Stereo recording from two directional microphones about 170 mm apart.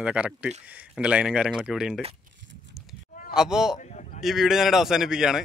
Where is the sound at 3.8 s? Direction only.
45° left (ahead or behind).